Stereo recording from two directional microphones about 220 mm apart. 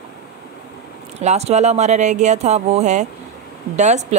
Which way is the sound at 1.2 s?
30° right (ahead or behind).